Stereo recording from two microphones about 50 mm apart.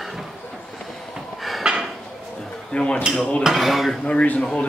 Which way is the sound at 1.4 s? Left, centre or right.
Centre.